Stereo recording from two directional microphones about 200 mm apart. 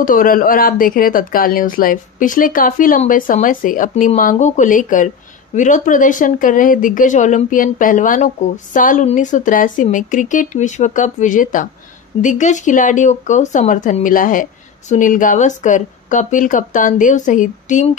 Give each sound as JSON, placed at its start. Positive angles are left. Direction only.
{"t": 0.0, "sound": "speech", "side_deg": 45}